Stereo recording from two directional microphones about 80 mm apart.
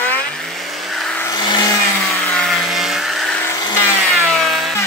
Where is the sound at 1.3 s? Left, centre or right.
Left.